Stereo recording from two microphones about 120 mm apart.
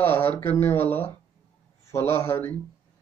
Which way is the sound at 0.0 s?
15° left (ahead or behind).